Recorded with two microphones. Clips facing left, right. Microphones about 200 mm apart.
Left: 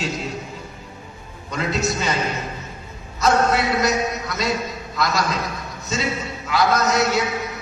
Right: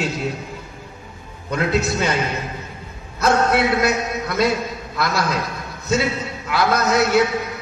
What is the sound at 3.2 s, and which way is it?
A man's voice, 60° right (ahead or behind).